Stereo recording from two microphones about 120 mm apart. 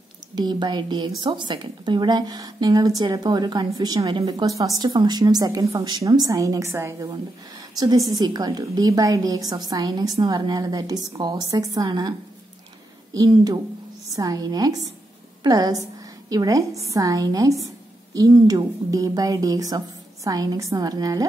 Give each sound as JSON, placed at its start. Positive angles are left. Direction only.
{"t": 0.4, "sound": "a woman's voice", "side_deg": -35}
{"t": 13.1, "sound": "a woman's voice", "side_deg": -30}